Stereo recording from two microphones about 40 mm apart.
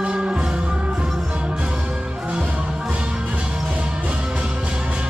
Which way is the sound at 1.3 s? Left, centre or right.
Right.